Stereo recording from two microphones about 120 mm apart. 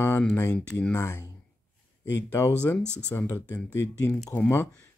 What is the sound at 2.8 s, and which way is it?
Speech, 20° right (ahead or behind).